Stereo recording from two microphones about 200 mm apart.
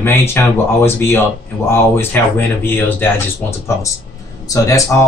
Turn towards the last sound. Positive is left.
turn(degrees=15)  # may be behind; listen again after turning